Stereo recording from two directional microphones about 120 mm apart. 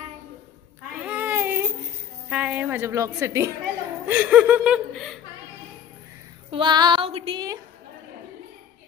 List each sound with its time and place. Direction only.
1.0 s child singing: 15° right (ahead or behind)
2.2 s a woman's voice: 10° right (ahead or behind)
4.1 s speech: 10° right (ahead or behind)
6.5 s female singing: 40° right (ahead or behind)
7.1 s speech: 55° right (ahead or behind)